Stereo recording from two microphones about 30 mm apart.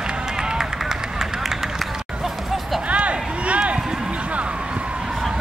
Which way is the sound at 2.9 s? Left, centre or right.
Right.